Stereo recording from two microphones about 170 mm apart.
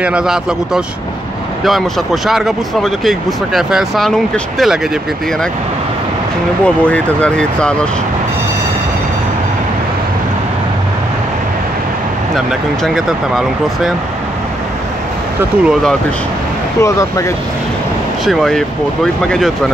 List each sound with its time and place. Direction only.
0.0 s speech: 5° right (ahead or behind)
6.6 s speech: 10° left (ahead or behind)
12.4 s speech: centre (ahead or behind)
15.6 s speech: centre (ahead or behind)
16.8 s speech: 20° left (ahead or behind)
18.2 s speech: centre (ahead or behind)